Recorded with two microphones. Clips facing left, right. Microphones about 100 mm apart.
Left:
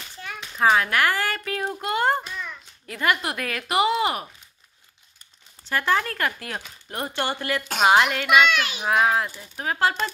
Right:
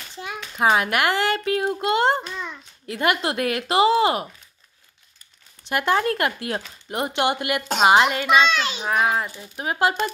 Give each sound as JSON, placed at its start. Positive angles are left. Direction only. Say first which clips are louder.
{"t": 0.2, "sound": "speech", "louder": "even", "side_deg": -20}
{"t": 5.7, "sound": "speech", "louder": "right 3 dB", "side_deg": -20}
{"t": 7.8, "sound": "a woman's voice", "louder": "right 2 dB", "side_deg": -5}
{"t": 8.5, "sound": "speech", "louder": "right 1 dB", "side_deg": -25}
{"t": 8.9, "sound": "a woman's voice", "louder": "left 1 dB", "side_deg": -5}